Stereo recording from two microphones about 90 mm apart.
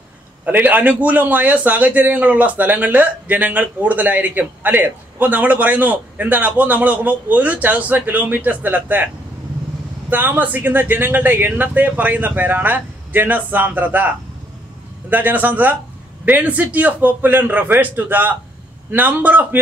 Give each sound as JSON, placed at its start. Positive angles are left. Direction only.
{"t": 0.5, "sound": "a man's voice", "side_deg": -20}